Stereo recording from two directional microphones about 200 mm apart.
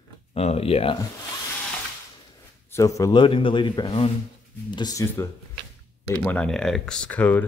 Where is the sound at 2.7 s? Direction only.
15° left (ahead or behind).